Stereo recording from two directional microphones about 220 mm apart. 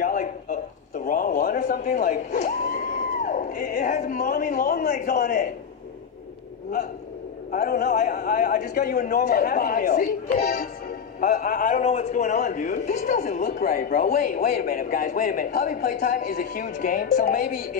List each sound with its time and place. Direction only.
0.0 s a sound: 35° left (ahead or behind)
4.0 s a man's voice: 35° left (ahead or behind)
7.5 s a man's voice: 45° left (ahead or behind)